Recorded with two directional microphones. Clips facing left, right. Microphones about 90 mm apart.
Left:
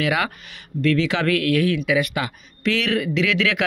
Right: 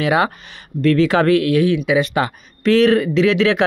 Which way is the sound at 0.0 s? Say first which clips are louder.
Right 5 dB; 30° right (ahead or behind).